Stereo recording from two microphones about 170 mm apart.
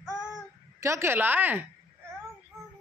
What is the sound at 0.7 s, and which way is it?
Speech, 15° right (ahead or behind).